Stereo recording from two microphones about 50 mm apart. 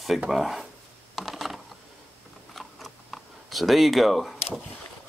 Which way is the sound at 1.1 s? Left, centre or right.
Centre.